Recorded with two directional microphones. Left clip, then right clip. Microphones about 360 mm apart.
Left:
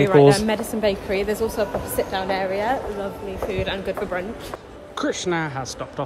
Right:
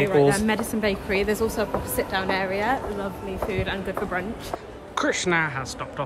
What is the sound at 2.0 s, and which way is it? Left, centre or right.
A woman's voice, centre.